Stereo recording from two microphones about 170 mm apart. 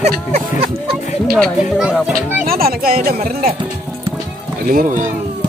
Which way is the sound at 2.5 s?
60° right (ahead or behind).